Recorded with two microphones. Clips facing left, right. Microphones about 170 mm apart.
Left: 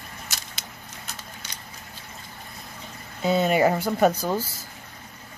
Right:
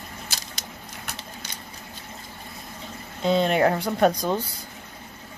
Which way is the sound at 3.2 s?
5° left (ahead or behind).